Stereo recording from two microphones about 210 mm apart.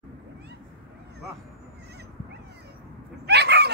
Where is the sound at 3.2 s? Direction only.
55° right (ahead or behind).